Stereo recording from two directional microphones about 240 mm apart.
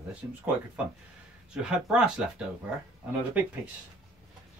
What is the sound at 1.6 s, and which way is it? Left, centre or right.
Speech, centre.